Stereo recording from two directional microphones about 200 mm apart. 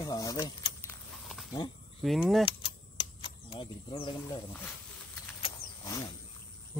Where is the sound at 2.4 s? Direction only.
25° left (ahead or behind).